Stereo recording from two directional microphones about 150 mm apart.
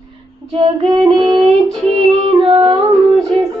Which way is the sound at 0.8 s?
25° right (ahead or behind).